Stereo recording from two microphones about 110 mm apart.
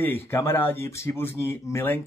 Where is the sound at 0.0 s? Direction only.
20° left (ahead or behind).